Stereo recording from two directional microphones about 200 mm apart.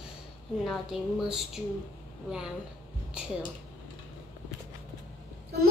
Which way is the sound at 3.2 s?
5° right (ahead or behind).